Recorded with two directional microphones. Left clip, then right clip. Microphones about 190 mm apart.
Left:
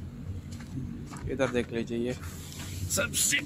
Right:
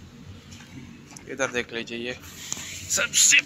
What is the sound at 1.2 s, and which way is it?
Speech, 10° left (ahead or behind).